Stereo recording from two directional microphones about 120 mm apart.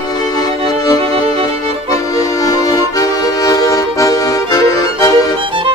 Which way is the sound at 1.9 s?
30° left (ahead or behind).